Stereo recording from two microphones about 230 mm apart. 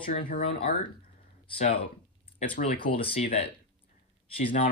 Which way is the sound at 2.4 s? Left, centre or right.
Left.